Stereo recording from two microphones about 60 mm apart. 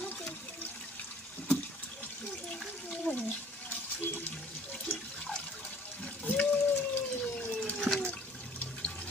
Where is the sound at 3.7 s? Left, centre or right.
Left.